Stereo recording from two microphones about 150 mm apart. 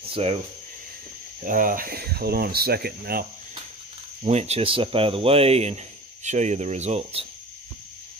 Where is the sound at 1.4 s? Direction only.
65° right (ahead or behind); by 3.2 s 90° right.